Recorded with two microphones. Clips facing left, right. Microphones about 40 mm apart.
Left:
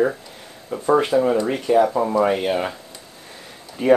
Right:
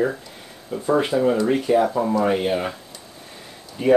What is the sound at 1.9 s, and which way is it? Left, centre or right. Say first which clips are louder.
Speech: left 2 dB; centre.